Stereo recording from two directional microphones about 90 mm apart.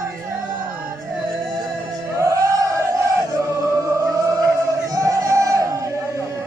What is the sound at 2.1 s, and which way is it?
Music, 35° right (ahead or behind).